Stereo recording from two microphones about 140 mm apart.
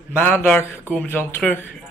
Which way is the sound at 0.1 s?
15° left (ahead or behind).